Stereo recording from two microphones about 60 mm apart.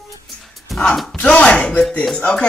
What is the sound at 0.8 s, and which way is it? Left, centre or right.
Speech, centre.